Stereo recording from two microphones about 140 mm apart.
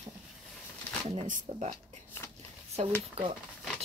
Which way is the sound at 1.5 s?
55° right (ahead or behind).